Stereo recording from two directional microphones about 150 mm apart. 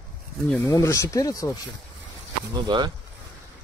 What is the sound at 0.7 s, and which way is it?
Speech, 20° left (ahead or behind).